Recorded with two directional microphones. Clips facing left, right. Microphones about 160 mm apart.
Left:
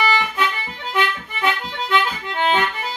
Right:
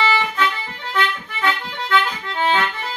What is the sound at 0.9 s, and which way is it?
Accordion, 15° left (ahead or behind).